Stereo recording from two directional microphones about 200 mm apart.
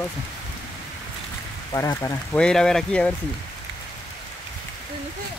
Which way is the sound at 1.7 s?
15° left (ahead or behind).